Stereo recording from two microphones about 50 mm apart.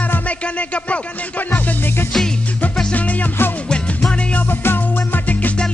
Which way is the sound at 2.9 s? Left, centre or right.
Left.